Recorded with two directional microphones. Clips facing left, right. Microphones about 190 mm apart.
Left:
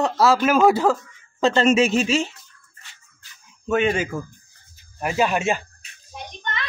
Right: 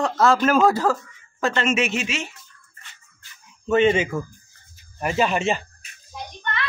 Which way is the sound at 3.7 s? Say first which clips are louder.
Right 3 dB; centre (ahead or behind).